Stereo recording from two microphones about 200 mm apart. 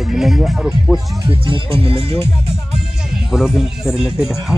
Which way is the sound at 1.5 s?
30° right (ahead or behind).